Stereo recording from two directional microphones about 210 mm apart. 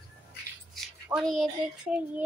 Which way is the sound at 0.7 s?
Centre (ahead or behind).